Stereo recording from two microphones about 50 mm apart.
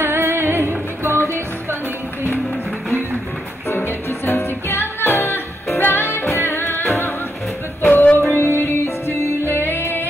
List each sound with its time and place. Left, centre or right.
0.0 s music: right
3.6 s music: left
7.8 s music: left
8.2 s music: left
9.5 s music: left